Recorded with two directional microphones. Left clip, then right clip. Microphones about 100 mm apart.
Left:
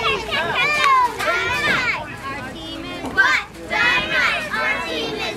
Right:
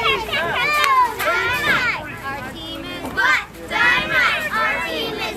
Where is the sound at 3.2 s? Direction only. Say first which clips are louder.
Even; 15° right (ahead or behind).